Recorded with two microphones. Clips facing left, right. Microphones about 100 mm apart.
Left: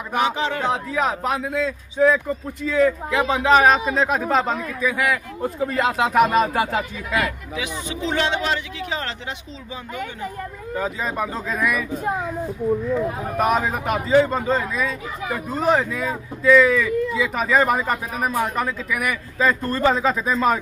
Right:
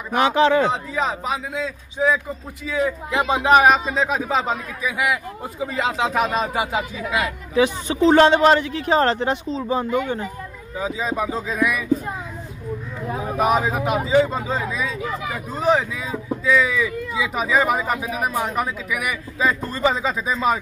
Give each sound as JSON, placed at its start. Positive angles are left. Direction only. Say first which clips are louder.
{"t": 0.2, "sound": "a man's voice", "louder": "right 6 dB", "side_deg": -85}
{"t": 0.7, "sound": "speech", "louder": "left 1 dB", "side_deg": 0}
{"t": 3.9, "sound": "speech", "louder": "left 1 dB", "side_deg": 0}
{"t": 4.9, "sound": "speech", "louder": "even", "side_deg": -15}
{"t": 5.6, "sound": "speech", "louder": "left 1 dB", "side_deg": 0}
{"t": 7.5, "sound": "speech", "louder": "right 9 dB", "side_deg": -40}
{"t": 10.8, "sound": "speech", "louder": "right 1 dB", "side_deg": 0}
{"t": 13.4, "sound": "speech", "louder": "right 1 dB", "side_deg": 0}